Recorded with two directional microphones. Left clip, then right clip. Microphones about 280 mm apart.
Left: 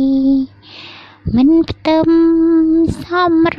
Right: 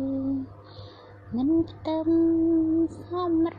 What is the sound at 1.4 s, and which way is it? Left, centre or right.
Child singing, left.